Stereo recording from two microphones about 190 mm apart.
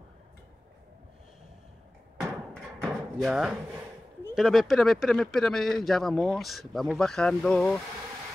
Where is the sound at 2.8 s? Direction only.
Centre (ahead or behind).